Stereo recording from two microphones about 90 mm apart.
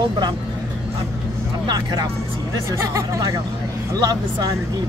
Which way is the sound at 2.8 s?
35° right (ahead or behind).